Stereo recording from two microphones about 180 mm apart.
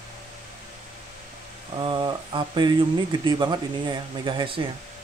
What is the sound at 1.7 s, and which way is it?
Speech, 25° right (ahead or behind).